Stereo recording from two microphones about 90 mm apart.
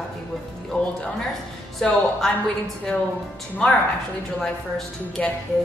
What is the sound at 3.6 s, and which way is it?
A woman's voice, 10° left (ahead or behind).